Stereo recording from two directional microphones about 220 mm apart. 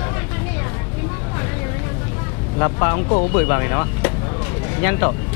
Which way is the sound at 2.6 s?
20° left (ahead or behind).